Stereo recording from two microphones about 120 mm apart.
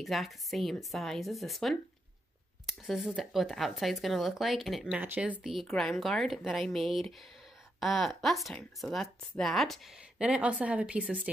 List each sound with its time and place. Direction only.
0.0 s a woman's voice: centre (ahead or behind)
2.9 s a woman's voice: centre (ahead or behind)
10.2 s speech: 10° right (ahead or behind)